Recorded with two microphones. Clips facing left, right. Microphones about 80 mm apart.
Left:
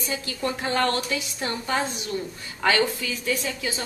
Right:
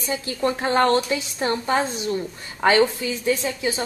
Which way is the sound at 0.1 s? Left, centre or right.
Right.